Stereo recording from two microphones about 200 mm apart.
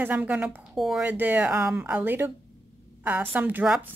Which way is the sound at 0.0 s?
10° right (ahead or behind).